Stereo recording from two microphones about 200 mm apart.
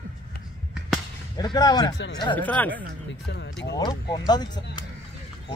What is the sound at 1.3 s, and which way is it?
Speech, 20° left (ahead or behind).